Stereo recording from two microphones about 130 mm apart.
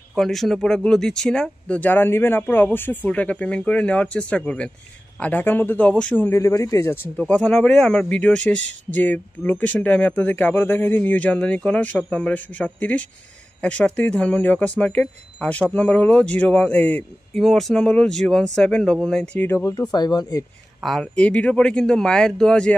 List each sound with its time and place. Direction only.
0.1 s a man's voice: centre (ahead or behind); by 7.0 s 25° left (ahead or behind)
7.2 s a man's voice: 10° left (ahead or behind)
17.4 s speech: centre (ahead or behind); by 19.7 s 15° left (ahead or behind)
19.9 s speech: 30° left (ahead or behind)
20.8 s speech: 5° left (ahead or behind)